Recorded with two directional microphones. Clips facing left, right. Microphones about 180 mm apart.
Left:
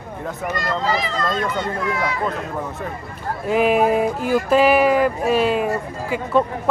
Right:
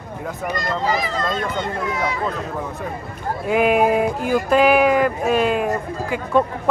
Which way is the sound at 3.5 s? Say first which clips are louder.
Even; centre (ahead or behind).